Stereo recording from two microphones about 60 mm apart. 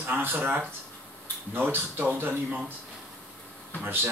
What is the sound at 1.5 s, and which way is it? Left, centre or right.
Speech, right.